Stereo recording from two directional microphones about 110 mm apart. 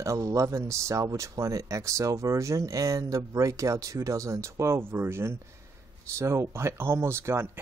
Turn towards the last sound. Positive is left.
turn(degrees=-20)  # may be behind; listen again after turning